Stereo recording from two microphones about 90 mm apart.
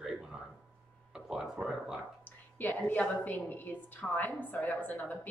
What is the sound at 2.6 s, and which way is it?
A woman's voice, 20° left (ahead or behind).